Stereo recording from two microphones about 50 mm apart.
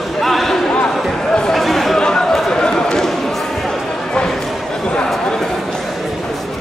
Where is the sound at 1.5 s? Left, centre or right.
Centre.